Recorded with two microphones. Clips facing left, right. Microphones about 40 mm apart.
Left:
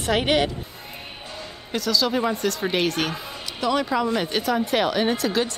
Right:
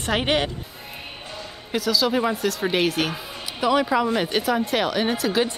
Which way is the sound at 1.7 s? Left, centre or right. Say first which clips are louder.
Right 1 dB; centre.